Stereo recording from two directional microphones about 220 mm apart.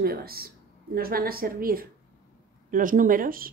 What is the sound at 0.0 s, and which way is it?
A woman's voice, 45° right (ahead or behind).